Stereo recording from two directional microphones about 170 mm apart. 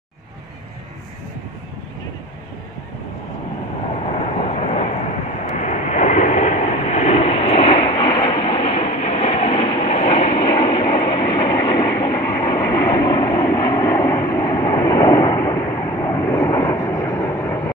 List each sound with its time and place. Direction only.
3.8 s vehicle: 40° left (ahead or behind)
8.1 s train: 20° left (ahead or behind)
8.4 s train: 35° left (ahead or behind); by 17.7 s 15° left (ahead or behind)